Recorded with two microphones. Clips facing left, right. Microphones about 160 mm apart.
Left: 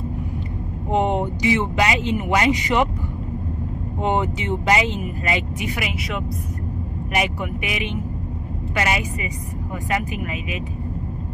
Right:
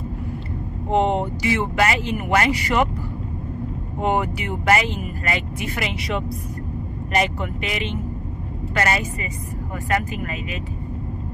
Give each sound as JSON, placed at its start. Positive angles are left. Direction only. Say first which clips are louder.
{"t": 0.9, "sound": "speech", "louder": "right 1 dB", "side_deg": 15}
{"t": 4.0, "sound": "speech", "louder": "even", "side_deg": 20}
{"t": 7.1, "sound": "speech", "louder": "right 2 dB", "side_deg": 15}